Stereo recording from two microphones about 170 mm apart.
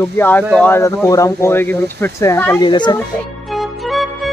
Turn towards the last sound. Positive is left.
turn(degrees=0)  # may be behind; listen again after turning